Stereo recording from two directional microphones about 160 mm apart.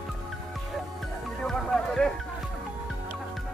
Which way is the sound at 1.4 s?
Centre (ahead or behind).